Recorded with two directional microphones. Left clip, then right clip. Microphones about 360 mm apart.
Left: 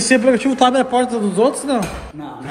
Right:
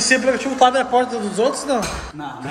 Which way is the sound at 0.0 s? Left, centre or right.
Centre.